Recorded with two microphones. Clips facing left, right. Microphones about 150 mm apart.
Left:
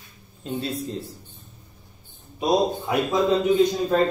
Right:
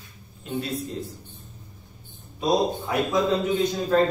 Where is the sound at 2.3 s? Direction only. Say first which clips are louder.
Left 1 dB; 20° left (ahead or behind).